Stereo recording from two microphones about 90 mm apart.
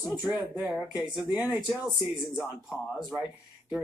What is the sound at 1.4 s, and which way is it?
Speech, 20° right (ahead or behind).